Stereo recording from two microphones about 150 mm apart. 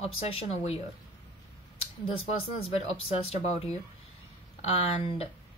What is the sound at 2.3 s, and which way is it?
A woman's voice, 40° left (ahead or behind).